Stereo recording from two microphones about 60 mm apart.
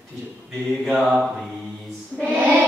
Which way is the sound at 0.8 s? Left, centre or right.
Centre.